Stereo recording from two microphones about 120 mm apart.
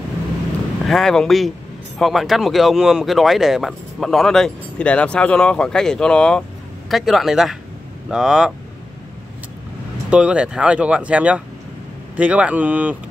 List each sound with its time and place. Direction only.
0.8 s speech: 5° left (ahead or behind)
10.0 s speech: 10° right (ahead or behind)